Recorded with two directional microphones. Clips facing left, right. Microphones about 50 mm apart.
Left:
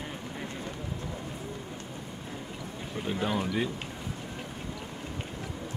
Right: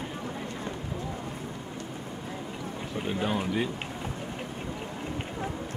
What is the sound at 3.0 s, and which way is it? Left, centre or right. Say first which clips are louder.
Speech: right 1 dB; centre.